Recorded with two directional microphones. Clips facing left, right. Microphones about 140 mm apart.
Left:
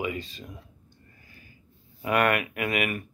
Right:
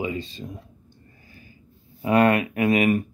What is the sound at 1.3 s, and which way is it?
Snort, 30° right (ahead or behind).